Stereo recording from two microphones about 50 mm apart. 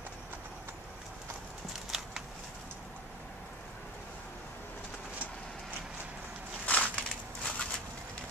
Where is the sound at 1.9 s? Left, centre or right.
Centre.